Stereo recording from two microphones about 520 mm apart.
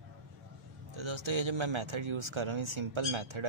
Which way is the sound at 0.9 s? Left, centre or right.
Right.